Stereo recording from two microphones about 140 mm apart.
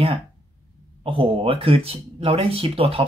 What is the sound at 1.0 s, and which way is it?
Speech, 40° right (ahead or behind).